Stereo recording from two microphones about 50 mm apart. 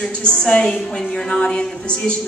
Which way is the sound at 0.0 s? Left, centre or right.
Left.